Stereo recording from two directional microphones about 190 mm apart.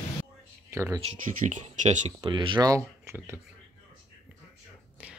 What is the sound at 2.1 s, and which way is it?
Speech, 25° right (ahead or behind).